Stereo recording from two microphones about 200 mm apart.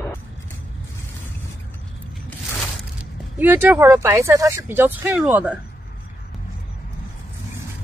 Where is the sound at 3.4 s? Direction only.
10° right (ahead or behind).